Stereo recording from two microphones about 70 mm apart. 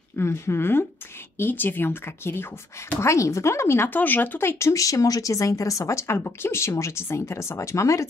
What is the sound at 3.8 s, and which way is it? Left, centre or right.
Speech, left.